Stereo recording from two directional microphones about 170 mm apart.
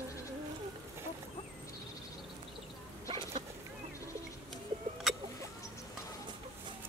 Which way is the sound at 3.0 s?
30° right (ahead or behind).